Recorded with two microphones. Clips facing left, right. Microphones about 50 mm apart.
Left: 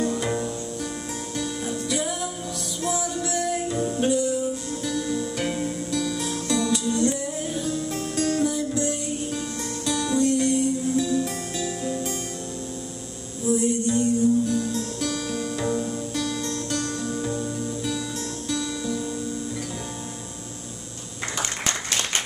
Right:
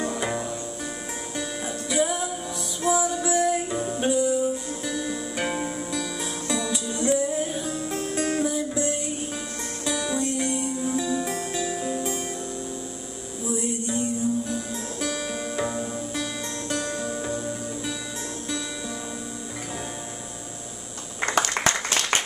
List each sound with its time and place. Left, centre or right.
0.0 s music: centre
13.5 s music: centre